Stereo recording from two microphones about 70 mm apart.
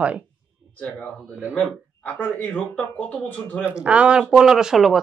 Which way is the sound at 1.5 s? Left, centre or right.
Centre.